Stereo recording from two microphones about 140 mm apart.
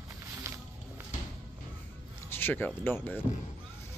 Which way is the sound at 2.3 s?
15° left (ahead or behind).